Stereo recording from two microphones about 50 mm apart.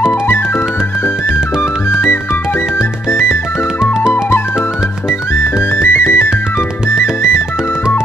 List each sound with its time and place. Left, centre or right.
1.9 s music: left
5.4 s music: left